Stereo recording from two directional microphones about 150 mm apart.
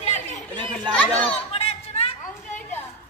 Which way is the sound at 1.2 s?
40° left (ahead or behind).